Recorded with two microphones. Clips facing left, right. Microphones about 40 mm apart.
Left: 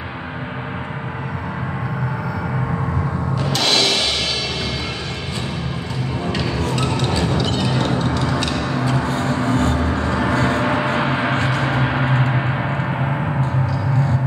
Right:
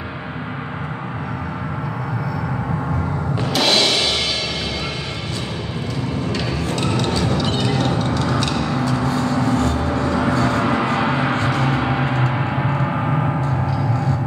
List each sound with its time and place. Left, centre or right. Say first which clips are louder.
3.5 s music: right 2 dB; centre
7.8 s a sound: even; centre
9.0 s vehicle: right 1 dB; left
10.3 s gong: even; left